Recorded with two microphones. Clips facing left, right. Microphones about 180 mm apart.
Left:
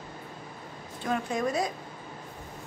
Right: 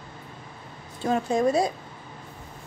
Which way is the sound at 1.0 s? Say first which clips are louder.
Right 6 dB; 30° right (ahead or behind).